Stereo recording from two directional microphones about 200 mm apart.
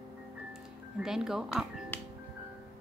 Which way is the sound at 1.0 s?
Centre (ahead or behind).